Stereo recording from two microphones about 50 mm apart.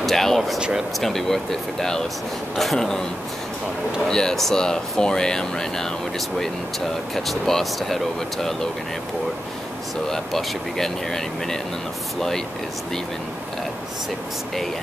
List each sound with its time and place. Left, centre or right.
0.0 s speech: centre
0.6 s speech: centre
0.9 s speech: centre
4.1 s speech: centre
10.0 s speech: centre